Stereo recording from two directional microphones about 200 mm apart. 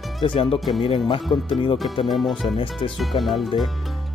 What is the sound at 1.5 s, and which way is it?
Speech, 25° left (ahead or behind).